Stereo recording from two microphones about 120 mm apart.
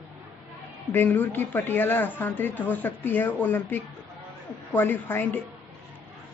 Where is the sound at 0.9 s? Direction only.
15° left (ahead or behind).